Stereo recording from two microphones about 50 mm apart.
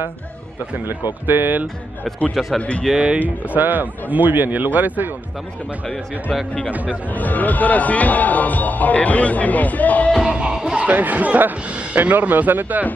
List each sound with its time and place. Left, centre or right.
0.8 s speech: right
2.4 s a man's voice: centre
3.2 s speech: right
6.7 s speech: right
7.2 s speech: left
10.2 s music: centre
10.9 s speech: right